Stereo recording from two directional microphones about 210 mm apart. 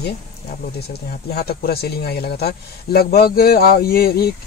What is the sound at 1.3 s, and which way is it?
A man's voice, 50° left (ahead or behind).